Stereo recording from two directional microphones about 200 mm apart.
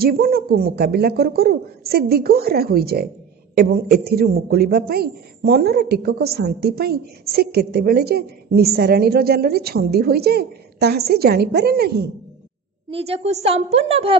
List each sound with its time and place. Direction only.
0.0 s speech: 50° right (ahead or behind)
12.9 s a woman's voice: 30° right (ahead or behind)